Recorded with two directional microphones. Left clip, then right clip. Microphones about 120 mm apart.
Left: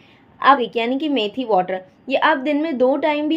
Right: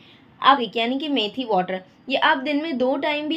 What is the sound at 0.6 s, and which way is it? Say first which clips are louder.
A woman's voice: left 3 dB; 15° left (ahead or behind).